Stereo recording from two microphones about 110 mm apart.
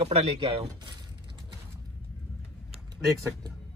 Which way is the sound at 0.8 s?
40° right (ahead or behind).